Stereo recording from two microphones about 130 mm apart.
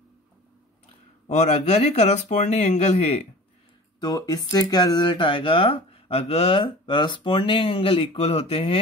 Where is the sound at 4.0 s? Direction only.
30° left (ahead or behind).